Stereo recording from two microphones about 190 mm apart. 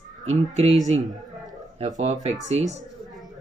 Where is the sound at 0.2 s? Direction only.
35° right (ahead or behind).